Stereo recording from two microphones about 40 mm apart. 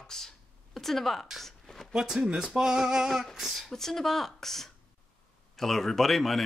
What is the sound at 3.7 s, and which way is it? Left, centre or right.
Speech, centre.